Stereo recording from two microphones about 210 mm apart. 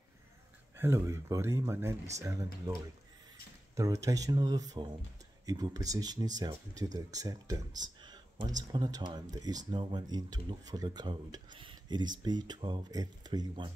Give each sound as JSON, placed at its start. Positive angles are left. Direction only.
{"t": 0.7, "sound": "speech", "side_deg": -10}
{"t": 3.7, "sound": "speech", "side_deg": -15}